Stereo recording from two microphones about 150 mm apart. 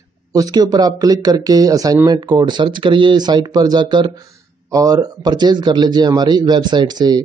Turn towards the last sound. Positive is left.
turn(degrees=-30)  # may be behind; listen again after turning